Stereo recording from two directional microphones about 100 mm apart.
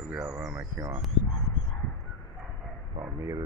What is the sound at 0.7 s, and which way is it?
Speech, 35° right (ahead or behind).